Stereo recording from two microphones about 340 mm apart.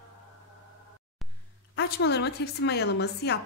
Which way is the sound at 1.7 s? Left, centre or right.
Left.